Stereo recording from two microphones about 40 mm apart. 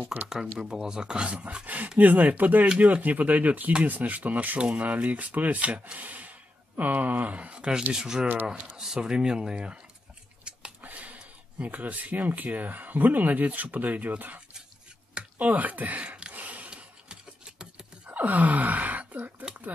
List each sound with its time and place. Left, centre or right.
0.0 s speech: right
0.3 s speech: centre; by 4.6 s right
4.6 s speech: right
4.8 s speech: right
10.8 s a sound: right
11.1 s speech: right
16.0 s a sound: right
16.7 s a sound: right
18.1 s wail: right